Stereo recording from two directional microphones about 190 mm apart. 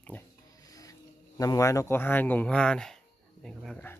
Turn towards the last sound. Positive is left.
turn(degrees=5)  # may be behind; listen again after turning